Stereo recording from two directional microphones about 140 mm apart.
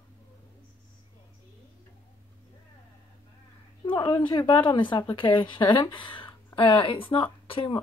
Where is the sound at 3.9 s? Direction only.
35° left (ahead or behind).